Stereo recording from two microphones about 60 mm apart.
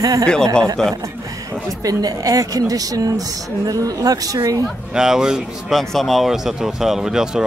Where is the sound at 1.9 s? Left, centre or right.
Right.